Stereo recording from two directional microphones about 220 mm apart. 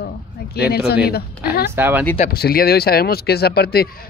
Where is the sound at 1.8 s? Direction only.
10° right (ahead or behind).